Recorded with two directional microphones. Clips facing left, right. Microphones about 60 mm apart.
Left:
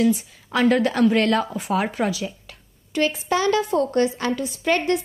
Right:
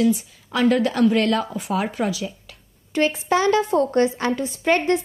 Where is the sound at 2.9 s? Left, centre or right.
Right.